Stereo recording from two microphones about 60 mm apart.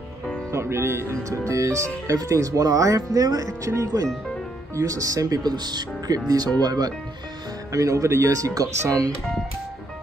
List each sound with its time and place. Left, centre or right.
0.5 s speech: right
7.7 s speech: right